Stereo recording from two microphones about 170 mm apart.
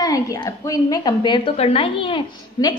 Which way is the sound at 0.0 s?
20° left (ahead or behind).